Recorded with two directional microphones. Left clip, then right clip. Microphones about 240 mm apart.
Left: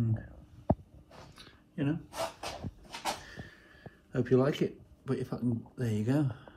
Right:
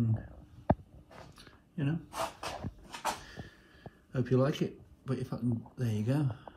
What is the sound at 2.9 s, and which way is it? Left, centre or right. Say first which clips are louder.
Cupboard open or close: even; centre.